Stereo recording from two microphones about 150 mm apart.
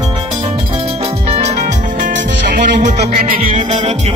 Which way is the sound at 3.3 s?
40° right (ahead or behind).